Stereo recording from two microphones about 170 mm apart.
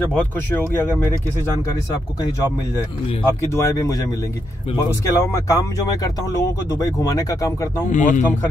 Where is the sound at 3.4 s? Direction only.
15° left (ahead or behind).